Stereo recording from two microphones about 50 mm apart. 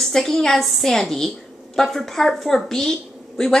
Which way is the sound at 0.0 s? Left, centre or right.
Centre.